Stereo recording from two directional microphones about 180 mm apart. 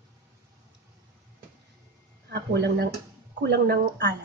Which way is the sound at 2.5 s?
70° right (ahead or behind).